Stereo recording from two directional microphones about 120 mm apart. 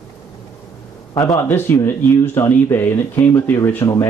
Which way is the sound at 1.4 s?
20° left (ahead or behind).